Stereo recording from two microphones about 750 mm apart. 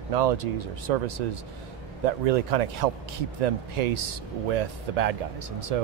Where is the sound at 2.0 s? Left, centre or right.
Right.